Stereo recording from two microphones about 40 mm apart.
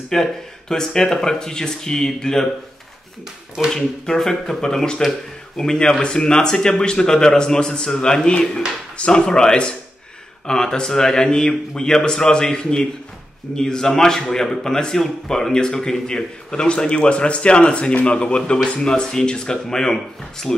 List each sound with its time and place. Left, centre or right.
0.1 s speech: centre
3.7 s speech: centre